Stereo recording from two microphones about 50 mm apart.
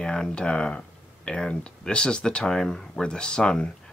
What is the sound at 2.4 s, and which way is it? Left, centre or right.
Speech, centre.